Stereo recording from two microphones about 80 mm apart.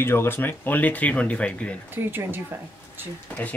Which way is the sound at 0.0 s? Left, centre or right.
Left.